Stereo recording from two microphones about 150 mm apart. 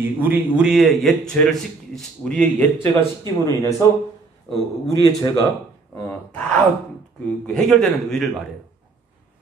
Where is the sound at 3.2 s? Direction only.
20° left (ahead or behind).